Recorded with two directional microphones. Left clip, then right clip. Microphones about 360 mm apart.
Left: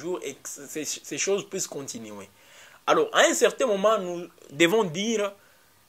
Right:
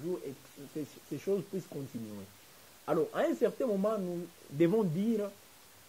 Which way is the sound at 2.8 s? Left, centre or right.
Centre.